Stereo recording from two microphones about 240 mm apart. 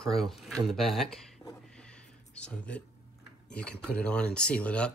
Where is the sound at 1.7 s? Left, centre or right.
Centre.